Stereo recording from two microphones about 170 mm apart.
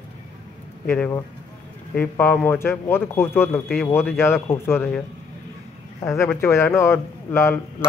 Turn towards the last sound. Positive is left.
turn(degrees=15)  # may be behind; listen again after turning